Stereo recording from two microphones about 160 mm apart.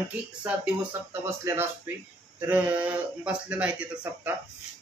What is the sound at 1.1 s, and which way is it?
Speech, 15° right (ahead or behind).